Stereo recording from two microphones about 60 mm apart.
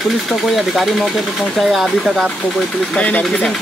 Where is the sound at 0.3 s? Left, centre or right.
Centre.